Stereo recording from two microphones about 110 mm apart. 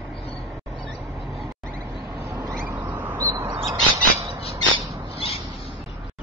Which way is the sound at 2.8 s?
15° right (ahead or behind).